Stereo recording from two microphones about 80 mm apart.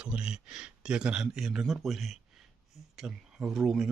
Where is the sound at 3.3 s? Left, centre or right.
Centre.